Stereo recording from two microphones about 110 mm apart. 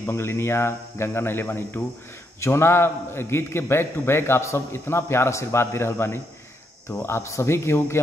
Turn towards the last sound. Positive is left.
turn(degrees=25)  # may be behind; listen again after turning